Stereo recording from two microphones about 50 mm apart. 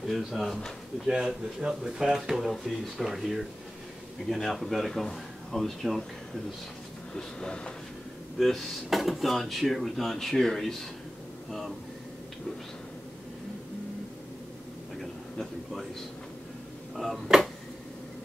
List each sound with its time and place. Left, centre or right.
0.0 s speech: centre
7.2 s speech: centre
8.4 s speech: centre
15.0 s a sound: centre
16.9 s speech: centre